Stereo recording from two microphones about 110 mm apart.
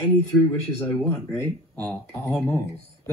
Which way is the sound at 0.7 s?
20° left (ahead or behind).